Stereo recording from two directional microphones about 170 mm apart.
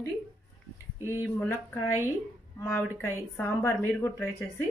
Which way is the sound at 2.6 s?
15° left (ahead or behind).